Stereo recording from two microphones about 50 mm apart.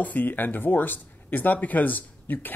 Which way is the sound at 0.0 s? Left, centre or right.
Left.